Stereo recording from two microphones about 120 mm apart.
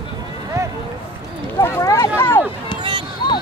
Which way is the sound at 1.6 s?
25° left (ahead or behind).